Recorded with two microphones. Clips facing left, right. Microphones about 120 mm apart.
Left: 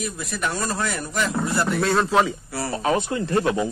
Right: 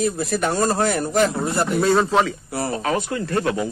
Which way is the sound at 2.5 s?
20° right (ahead or behind).